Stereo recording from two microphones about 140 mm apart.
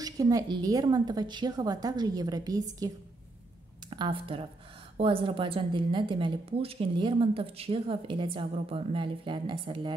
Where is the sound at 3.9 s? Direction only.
35° right (ahead or behind).